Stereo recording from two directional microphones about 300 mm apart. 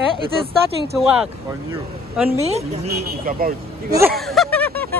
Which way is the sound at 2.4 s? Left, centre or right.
Right.